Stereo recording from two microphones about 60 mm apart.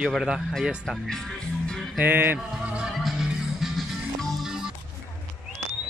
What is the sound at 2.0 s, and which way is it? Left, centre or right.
Music, right.